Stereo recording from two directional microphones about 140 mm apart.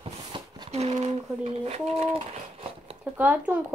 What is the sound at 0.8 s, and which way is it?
Speech, 50° right (ahead or behind).